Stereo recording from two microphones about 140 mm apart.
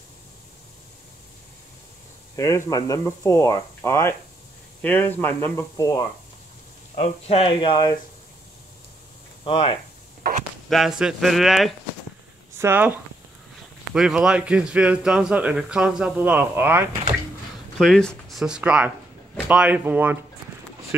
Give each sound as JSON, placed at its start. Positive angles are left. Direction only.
{"t": 2.3, "sound": "speech", "side_deg": 25}
{"t": 5.8, "sound": "speech", "side_deg": 25}
{"t": 7.0, "sound": "speech", "side_deg": 45}
{"t": 9.4, "sound": "speech", "side_deg": 45}
{"t": 10.7, "sound": "speech", "side_deg": 0}
{"t": 12.5, "sound": "a man's voice", "side_deg": -15}
{"t": 17.7, "sound": "a man's voice", "side_deg": 5}